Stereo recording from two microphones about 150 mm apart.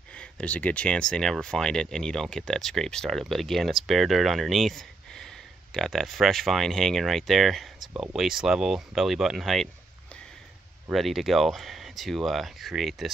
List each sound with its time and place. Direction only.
0.1 s speech: 5° left (ahead or behind)
10.9 s speech: centre (ahead or behind)